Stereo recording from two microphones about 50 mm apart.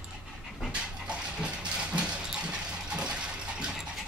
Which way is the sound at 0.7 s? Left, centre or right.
Right.